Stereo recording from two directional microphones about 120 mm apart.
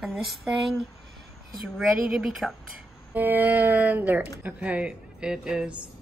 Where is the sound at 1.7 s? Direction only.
5° right (ahead or behind).